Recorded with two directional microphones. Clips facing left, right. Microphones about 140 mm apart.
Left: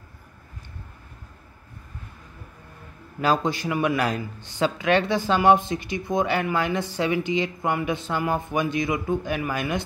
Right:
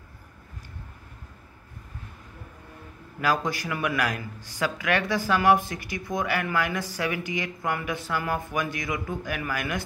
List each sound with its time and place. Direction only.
3.2 s speech: 25° left (ahead or behind)